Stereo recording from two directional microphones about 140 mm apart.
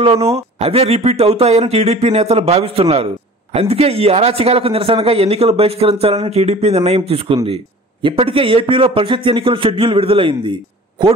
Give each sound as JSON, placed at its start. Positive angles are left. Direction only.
{"t": 0.0, "sound": "a man's voice", "side_deg": -45}